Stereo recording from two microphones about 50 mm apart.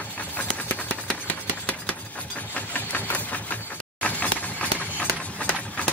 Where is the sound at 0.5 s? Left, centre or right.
Left.